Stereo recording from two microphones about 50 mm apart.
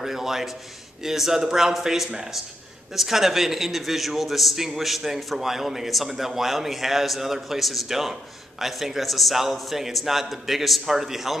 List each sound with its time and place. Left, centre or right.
0.0 s a man's voice: centre